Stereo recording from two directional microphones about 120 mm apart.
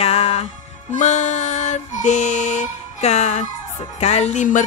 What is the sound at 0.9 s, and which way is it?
Music, 80° left.